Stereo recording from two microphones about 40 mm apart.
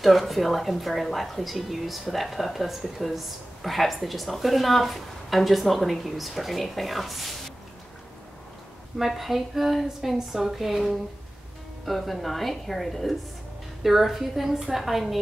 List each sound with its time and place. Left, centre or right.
0.0 s speech: centre
8.9 s a woman's voice: centre